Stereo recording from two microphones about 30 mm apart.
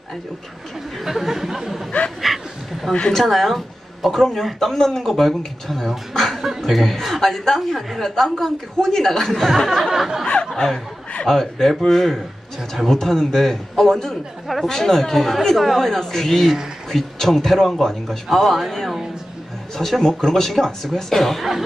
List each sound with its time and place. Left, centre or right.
1.0 s chatter: centre
2.2 s a sound: centre
2.9 s speech: left
3.2 s speech: centre
6.3 s speech: centre
9.7 s a sound: centre
10.2 s a sound: left
10.5 s speech: centre
20.0 s speech: centre